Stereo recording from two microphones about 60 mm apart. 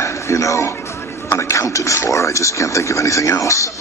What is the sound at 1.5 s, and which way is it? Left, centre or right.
Speech, left.